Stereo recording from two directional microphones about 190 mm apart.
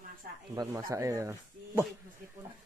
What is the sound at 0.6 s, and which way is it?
Speech, 20° right (ahead or behind).